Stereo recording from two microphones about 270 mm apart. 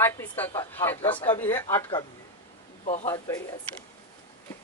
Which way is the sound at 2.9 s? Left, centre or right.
Left.